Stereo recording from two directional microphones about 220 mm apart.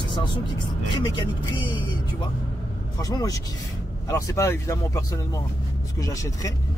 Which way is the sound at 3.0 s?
15° left (ahead or behind).